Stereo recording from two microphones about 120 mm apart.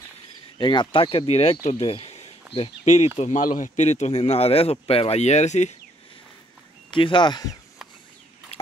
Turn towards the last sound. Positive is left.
turn(degrees=35)  # may be behind; listen again after turning